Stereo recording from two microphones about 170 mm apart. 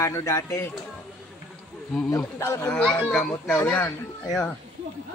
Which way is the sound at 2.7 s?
5° left (ahead or behind).